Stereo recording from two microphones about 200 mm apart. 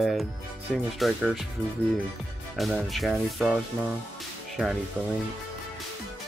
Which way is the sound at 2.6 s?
Centre (ahead or behind).